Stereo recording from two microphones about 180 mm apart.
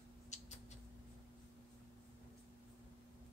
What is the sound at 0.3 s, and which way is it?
Rodents, 40° left (ahead or behind).